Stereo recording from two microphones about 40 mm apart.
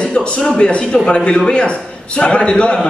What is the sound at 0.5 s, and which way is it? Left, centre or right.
A man's voice, left.